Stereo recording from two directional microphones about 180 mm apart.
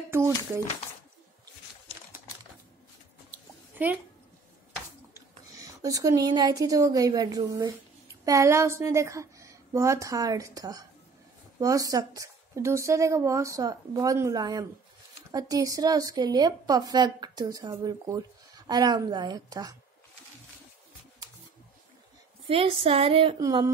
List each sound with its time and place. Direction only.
0.3 s speech: 15° left (ahead or behind)
3.7 s speech: 10° right (ahead or behind)
5.1 s a woman's voice: 20° right (ahead or behind)
22.5 s a woman's voice: 30° right (ahead or behind)